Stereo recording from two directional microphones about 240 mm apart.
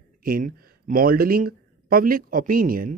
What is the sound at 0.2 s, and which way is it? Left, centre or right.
Speech, right.